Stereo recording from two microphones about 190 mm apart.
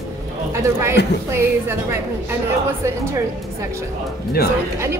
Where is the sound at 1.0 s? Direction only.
60° left (ahead or behind).